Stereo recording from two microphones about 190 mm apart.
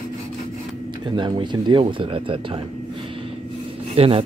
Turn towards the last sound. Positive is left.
turn(degrees=-30)  # may be behind; listen again after turning